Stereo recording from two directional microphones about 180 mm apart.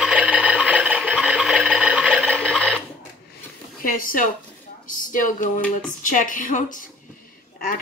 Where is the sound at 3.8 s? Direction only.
50° left (ahead or behind).